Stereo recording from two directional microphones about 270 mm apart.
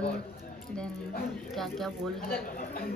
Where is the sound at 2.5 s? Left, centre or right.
Left.